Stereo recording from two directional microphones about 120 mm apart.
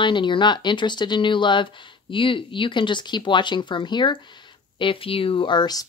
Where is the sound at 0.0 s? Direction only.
40° left (ahead or behind).